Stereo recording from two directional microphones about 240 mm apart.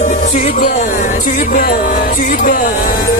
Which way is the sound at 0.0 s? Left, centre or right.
Left.